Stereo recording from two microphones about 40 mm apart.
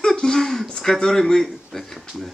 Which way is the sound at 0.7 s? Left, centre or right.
Centre.